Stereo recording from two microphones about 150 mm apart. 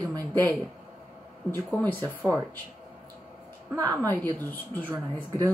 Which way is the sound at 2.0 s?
20° right (ahead or behind).